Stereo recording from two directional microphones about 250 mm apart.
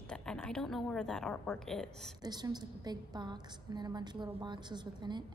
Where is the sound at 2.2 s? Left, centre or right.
Centre.